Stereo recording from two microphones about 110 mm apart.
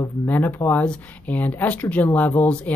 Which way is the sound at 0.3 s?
15° left (ahead or behind).